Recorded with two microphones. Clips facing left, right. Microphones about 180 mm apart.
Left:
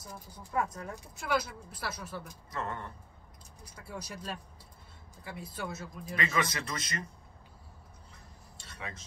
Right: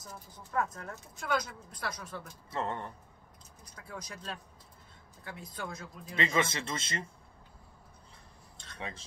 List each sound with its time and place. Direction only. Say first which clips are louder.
0.0 s speech: left 1 dB; 10° left (ahead or behind)
2.5 s speech: right 2 dB; 25° right (ahead or behind)
3.6 s speech: left 2 dB; 10° left (ahead or behind)
6.1 s speech: right 2 dB; 25° right (ahead or behind)
8.7 s speech: right 2 dB; 30° right (ahead or behind)